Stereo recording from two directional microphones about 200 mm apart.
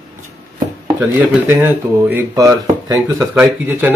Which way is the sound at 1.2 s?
10° right (ahead or behind).